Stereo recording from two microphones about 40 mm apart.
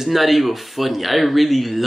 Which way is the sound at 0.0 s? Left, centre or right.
Centre.